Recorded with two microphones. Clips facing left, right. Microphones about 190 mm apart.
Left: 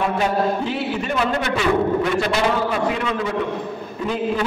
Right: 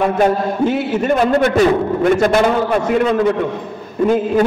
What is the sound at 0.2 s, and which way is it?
A man's voice, 50° right (ahead or behind).